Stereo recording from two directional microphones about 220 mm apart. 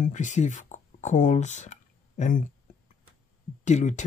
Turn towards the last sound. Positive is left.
turn(degrees=35)  # may be behind; listen again after turning